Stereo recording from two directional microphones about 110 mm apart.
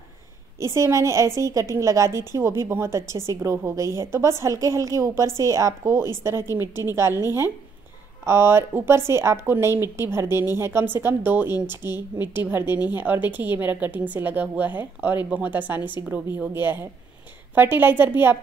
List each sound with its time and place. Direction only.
0.6 s a woman's voice: 25° right (ahead or behind)
8.3 s a woman's voice: 20° right (ahead or behind)